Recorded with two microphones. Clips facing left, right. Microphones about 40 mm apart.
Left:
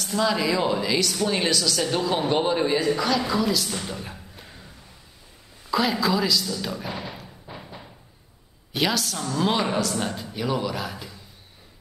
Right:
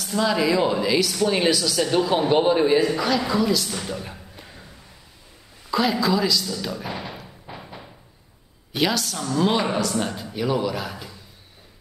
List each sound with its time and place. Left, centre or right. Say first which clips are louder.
0.0 s speech: right 2 dB; centre
5.7 s a sound: right 1 dB; centre
8.7 s speech: right 2 dB; centre